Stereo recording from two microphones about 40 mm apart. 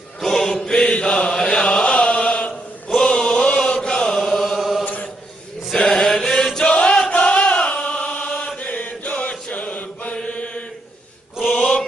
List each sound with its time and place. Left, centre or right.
0.2 s mantra: centre
0.7 s chant: left
4.2 s chant: centre
5.9 s chant: centre
6.7 s chant: left
8.3 s chant: centre
8.5 s mantra: left
11.4 s a sound: left